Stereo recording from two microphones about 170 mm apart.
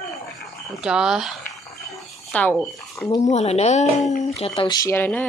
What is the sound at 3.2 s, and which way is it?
Speech, 40° left (ahead or behind).